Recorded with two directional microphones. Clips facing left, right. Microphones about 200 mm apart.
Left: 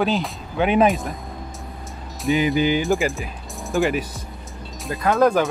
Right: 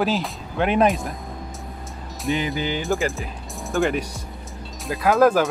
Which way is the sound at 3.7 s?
Centre (ahead or behind).